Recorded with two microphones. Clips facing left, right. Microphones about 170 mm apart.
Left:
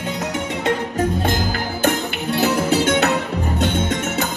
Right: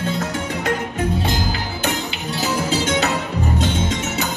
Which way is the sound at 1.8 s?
60° left (ahead or behind).